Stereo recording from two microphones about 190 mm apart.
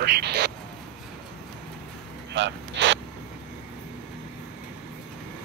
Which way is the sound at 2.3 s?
70° right (ahead or behind).